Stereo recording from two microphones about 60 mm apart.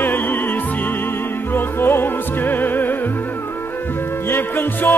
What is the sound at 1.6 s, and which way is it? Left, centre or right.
Music, left.